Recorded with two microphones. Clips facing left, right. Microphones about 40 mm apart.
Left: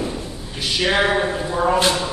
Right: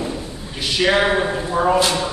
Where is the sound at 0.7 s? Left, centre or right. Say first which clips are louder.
Right 2 dB; centre.